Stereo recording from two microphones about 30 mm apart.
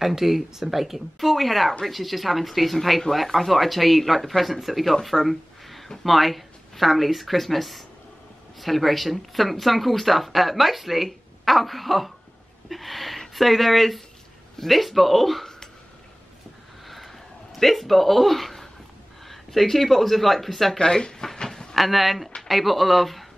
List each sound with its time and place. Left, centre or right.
0.0 s speech: centre
5.0 s a sound: centre
6.0 s speech: centre
12.6 s a sound: centre
13.3 s speech: centre
16.8 s vehicle: centre
17.6 s speech: centre
20.7 s speech: left
21.2 s a sound: centre
21.7 s speech: centre